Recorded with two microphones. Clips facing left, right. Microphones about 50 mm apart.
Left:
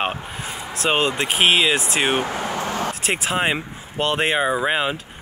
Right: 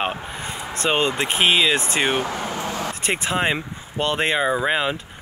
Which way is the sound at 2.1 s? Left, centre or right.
Left.